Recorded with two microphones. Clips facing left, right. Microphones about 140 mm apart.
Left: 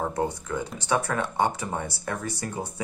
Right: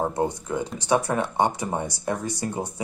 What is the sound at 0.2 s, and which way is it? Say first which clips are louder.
Speech: right 3 dB; 20° right (ahead or behind).